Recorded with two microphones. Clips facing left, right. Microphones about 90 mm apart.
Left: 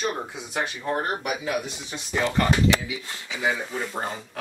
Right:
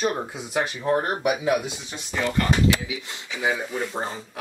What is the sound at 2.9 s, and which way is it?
Speech, 20° right (ahead or behind).